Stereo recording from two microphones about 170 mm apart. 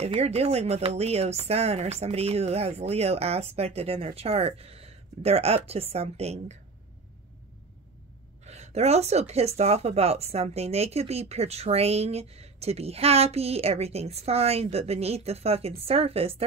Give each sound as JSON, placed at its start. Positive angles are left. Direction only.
{"t": 0.0, "sound": "speech", "side_deg": -40}
{"t": 8.5, "sound": "speech", "side_deg": -40}